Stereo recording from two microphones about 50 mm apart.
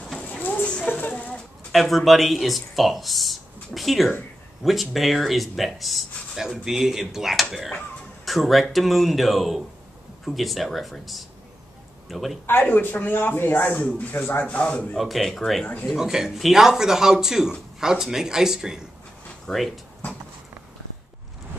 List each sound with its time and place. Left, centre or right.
0.2 s a sound: left
1.7 s speech: centre
12.7 s speech: left
15.0 s speech: centre